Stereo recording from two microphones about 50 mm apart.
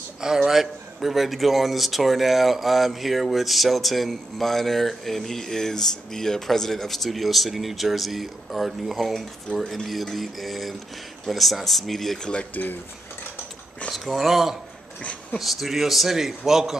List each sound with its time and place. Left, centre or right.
0.2 s a man's voice: centre
12.2 s speech: centre
13.9 s a man's voice: centre